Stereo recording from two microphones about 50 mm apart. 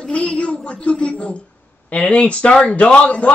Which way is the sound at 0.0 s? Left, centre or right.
Left.